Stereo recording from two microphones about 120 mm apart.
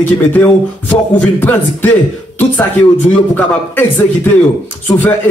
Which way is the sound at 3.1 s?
15° left (ahead or behind).